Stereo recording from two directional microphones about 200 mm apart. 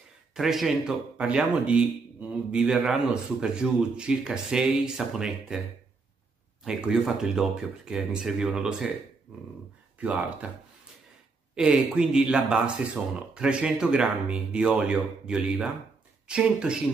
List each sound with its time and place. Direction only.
0.3 s a man's voice: centre (ahead or behind)
6.6 s a man's voice: 5° right (ahead or behind)
9.9 s speech: 5° right (ahead or behind)
11.5 s a man's voice: 5° right (ahead or behind)